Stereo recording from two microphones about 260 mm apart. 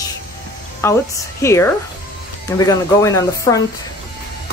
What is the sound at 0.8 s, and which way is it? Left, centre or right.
Speech, centre.